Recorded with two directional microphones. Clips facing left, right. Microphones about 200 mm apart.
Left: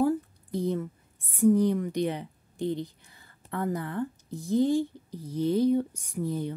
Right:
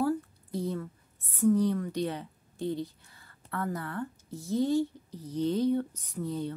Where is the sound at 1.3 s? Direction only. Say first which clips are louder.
Left 3 dB; 15° left (ahead or behind).